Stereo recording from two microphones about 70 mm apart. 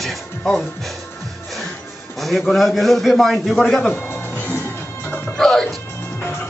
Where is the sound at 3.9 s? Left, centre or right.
Left.